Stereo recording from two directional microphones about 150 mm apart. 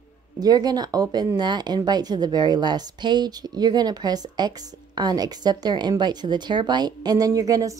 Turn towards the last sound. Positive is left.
turn(degrees=-20)  # may be behind; listen again after turning